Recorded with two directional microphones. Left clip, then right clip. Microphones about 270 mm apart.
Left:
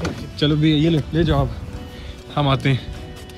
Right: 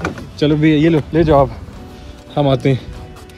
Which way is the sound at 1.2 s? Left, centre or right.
Right.